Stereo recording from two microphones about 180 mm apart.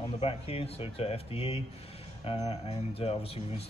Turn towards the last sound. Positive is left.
turn(degrees=30)  # may be behind; listen again after turning